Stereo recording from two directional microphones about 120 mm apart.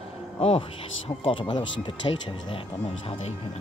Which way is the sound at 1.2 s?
45° left (ahead or behind).